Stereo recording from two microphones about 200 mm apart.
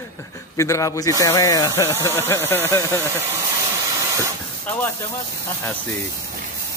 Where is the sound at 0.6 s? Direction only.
15° left (ahead or behind).